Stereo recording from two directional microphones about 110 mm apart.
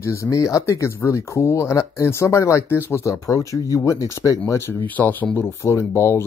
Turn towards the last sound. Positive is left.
turn(degrees=25)  # may be behind; listen again after turning